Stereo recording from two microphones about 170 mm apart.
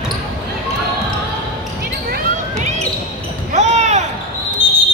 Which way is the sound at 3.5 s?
45° right (ahead or behind).